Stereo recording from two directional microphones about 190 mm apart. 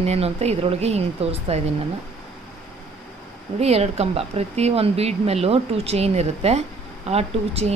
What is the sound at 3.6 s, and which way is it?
Speech, 35° right (ahead or behind).